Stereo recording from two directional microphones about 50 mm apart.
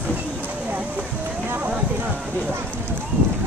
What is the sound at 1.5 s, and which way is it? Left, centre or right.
Clip-clop, right.